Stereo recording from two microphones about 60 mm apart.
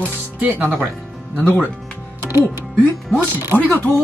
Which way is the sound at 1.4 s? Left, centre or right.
Left.